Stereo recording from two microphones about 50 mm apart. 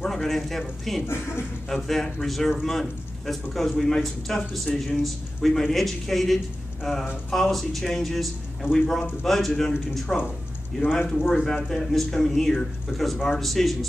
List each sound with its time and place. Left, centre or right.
0.0 s speech: centre
1.0 s speech: left
1.8 s speech: centre
10.8 s speech: left
11.1 s speech: centre